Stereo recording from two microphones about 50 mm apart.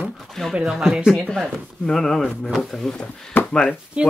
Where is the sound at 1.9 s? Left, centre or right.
Centre.